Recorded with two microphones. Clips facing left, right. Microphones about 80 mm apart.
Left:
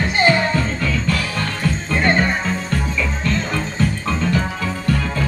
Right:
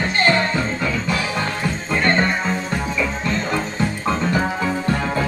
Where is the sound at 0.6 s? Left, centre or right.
Centre.